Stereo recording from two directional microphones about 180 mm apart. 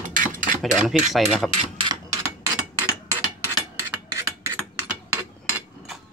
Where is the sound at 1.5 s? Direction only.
30° right (ahead or behind).